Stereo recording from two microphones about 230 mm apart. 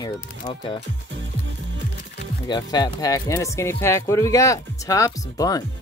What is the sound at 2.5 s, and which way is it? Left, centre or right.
Speech, centre.